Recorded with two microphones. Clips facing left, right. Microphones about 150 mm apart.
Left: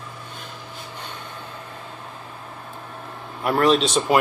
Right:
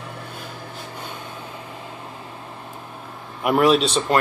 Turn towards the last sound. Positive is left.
turn(degrees=5)  # may be behind; listen again after turning